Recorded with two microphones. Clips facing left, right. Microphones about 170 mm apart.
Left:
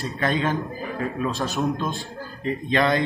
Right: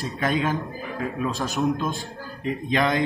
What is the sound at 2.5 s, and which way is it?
Speech, 15° right (ahead or behind).